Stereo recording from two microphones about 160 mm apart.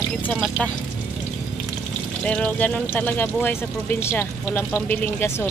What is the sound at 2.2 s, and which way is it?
Stir, 10° left (ahead or behind).